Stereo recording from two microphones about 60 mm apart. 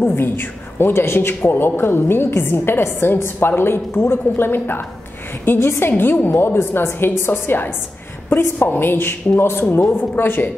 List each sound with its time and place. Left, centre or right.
0.0 s a man's voice: left
8.4 s a woman's voice: left
8.6 s a man's voice: left